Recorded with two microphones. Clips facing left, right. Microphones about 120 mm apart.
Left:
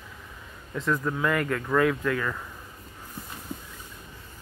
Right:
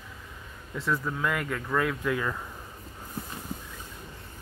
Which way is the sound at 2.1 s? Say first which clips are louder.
Even; 15° right (ahead or behind).